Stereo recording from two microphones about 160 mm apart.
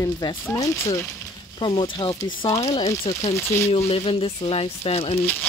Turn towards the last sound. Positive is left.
turn(degrees=40)  # may be behind; listen again after turning